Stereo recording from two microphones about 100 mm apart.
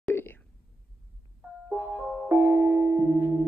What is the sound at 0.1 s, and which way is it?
Whispering, 20° left (ahead or behind).